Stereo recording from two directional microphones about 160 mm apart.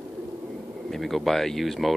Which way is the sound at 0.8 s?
Centre (ahead or behind).